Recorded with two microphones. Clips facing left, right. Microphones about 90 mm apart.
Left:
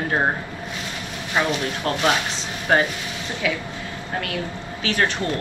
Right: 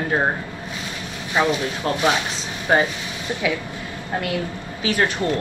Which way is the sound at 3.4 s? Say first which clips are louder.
Even; 20° right (ahead or behind).